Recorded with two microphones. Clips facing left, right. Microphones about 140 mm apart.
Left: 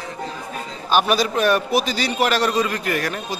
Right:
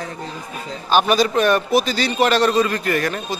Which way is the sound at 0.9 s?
5° left (ahead or behind).